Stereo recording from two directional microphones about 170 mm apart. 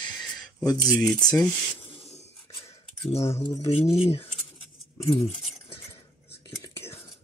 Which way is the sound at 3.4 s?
25° left (ahead or behind).